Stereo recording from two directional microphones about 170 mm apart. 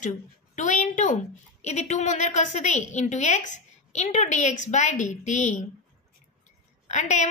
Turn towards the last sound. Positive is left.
turn(degrees=45)  # may be behind; listen again after turning